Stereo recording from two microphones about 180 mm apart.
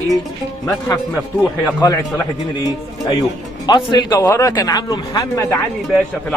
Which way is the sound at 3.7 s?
25° left (ahead or behind).